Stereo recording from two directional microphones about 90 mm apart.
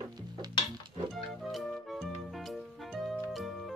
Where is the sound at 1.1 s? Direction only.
Centre (ahead or behind).